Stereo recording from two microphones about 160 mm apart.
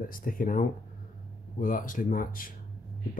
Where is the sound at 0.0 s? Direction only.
65° left (ahead or behind).